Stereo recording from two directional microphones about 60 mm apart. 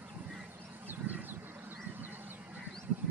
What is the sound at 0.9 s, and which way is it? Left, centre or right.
Vehicle, right.